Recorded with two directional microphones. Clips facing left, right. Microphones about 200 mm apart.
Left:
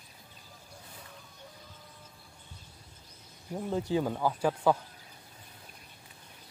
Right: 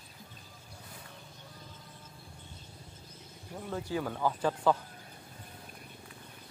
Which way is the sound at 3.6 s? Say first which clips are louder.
Left 5 dB; 20° left (ahead or behind).